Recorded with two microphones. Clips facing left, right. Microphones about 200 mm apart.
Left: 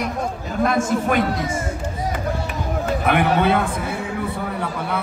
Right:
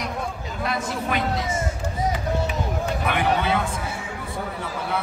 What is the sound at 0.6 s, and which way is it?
Speech, 50° left (ahead or behind).